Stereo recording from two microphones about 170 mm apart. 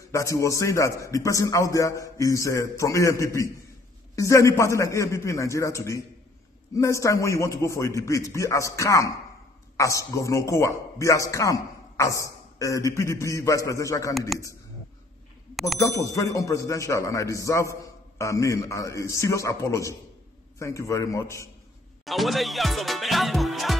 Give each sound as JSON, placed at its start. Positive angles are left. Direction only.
{"t": 0.1, "sound": "a man's voice", "side_deg": 20}
{"t": 16.0, "sound": "a man's voice", "side_deg": 20}
{"t": 22.0, "sound": "music", "side_deg": 0}